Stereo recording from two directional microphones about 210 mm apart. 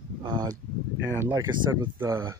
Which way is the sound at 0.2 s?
20° right (ahead or behind).